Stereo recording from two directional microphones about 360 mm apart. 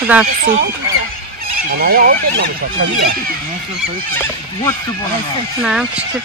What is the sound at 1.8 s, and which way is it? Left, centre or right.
Speech, right.